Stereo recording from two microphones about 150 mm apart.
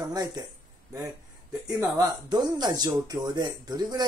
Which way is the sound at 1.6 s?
25° right (ahead or behind).